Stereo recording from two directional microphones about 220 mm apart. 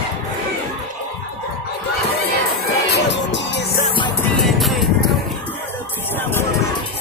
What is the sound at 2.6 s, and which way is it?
Music, 55° left (ahead or behind).